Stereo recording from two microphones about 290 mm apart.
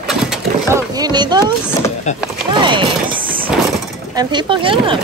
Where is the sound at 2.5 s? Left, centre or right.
Centre.